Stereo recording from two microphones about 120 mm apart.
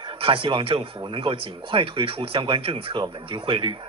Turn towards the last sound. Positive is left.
turn(degrees=-45)  # may be behind; listen again after turning